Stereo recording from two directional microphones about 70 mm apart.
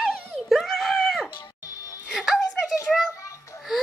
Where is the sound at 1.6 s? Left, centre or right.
Left.